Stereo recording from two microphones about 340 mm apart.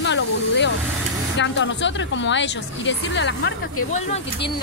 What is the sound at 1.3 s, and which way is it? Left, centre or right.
Speech, left.